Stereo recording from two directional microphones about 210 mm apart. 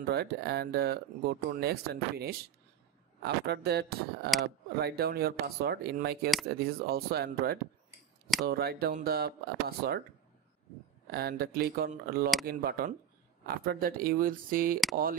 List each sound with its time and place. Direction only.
0.0 s speech: 50° right (ahead or behind)
11.1 s speech: 45° right (ahead or behind)